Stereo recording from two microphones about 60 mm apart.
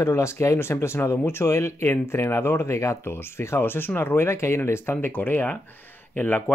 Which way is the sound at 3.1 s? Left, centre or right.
Left.